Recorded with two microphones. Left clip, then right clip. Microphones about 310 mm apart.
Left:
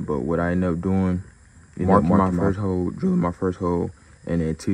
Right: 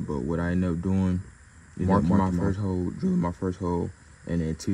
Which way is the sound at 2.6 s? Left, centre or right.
Left.